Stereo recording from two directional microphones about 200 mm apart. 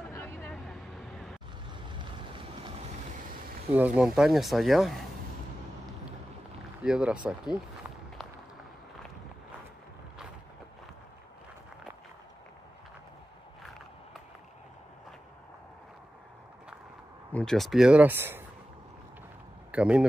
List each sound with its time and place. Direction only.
0.1 s vehicle: 10° left (ahead or behind)
1.7 s vehicle: 25° right (ahead or behind)
3.7 s speech: 5° right (ahead or behind)
6.8 s speech: 5° right (ahead or behind)
17.3 s speech: 5° left (ahead or behind)
19.7 s speech: 5° right (ahead or behind)